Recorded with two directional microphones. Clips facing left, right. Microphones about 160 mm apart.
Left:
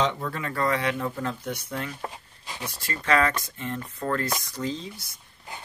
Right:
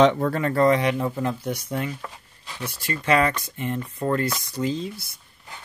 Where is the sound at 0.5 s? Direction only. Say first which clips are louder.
Right 6 dB; 25° right (ahead or behind).